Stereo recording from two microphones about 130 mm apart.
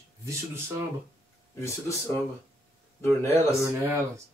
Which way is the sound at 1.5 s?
20° left (ahead or behind).